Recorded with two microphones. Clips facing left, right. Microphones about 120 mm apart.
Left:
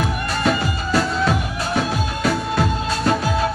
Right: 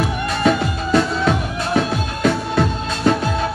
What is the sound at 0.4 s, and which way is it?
Music, centre (ahead or behind).